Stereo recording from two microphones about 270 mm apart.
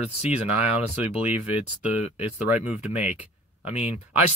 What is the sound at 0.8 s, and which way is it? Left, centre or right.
Speech, left.